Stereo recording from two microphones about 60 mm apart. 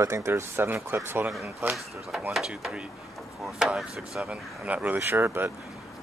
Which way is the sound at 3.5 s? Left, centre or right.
Centre.